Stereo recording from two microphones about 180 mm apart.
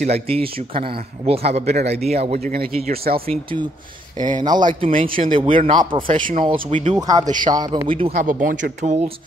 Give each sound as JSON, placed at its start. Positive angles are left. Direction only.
{"t": 0.0, "sound": "a man's voice", "side_deg": -35}
{"t": 2.5, "sound": "speech", "side_deg": -55}
{"t": 3.2, "sound": "a man's voice", "side_deg": -30}
{"t": 6.1, "sound": "a man's voice", "side_deg": -45}
{"t": 6.9, "sound": "speech", "side_deg": -20}
{"t": 8.1, "sound": "speech", "side_deg": -50}